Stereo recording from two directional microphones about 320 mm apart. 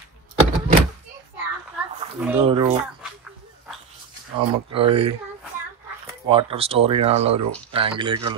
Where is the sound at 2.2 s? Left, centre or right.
Centre.